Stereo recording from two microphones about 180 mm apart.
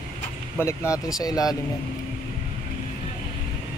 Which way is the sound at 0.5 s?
15° left (ahead or behind).